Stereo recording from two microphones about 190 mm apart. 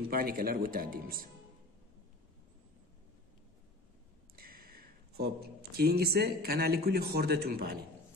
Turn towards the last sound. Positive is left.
turn(degrees=-55)  # may be behind; listen again after turning